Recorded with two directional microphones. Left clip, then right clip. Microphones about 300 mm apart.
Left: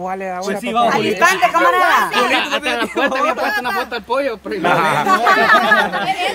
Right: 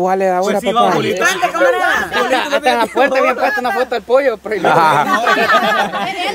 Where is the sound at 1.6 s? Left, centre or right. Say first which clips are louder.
Right 4 dB; left.